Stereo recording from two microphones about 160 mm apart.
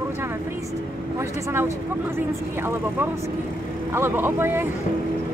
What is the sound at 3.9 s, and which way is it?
Speech, 15° right (ahead or behind).